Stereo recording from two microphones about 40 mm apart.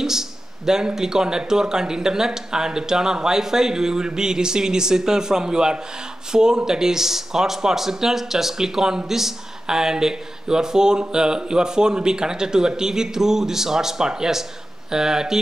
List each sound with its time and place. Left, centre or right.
0.0 s speech: centre